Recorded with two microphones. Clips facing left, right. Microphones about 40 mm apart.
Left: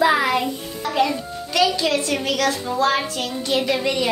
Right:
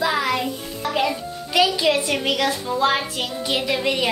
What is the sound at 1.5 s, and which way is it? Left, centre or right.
A child's voice, centre.